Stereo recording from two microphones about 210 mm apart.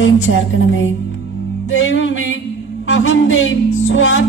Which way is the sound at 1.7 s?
65° left (ahead or behind).